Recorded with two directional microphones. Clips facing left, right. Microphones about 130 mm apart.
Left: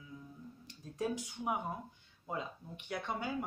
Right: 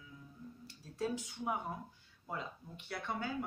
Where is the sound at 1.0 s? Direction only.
15° left (ahead or behind).